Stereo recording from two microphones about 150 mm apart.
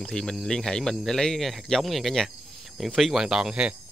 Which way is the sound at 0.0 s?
5° left (ahead or behind).